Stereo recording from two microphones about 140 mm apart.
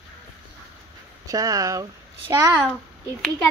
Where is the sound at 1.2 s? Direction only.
25° right (ahead or behind).